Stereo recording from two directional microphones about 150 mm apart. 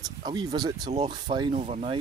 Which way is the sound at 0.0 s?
30° right (ahead or behind).